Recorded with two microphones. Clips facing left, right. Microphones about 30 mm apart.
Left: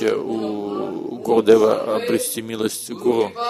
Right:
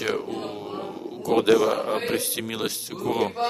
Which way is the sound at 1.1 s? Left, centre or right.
Centre.